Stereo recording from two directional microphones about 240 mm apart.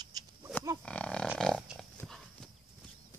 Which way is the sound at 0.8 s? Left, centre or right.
Centre.